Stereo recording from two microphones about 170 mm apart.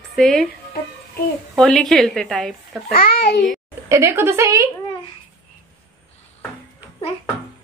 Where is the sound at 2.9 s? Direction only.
60° left (ahead or behind).